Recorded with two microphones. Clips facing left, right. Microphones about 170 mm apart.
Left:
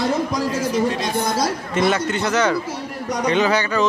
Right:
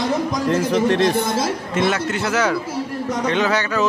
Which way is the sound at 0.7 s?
70° right (ahead or behind).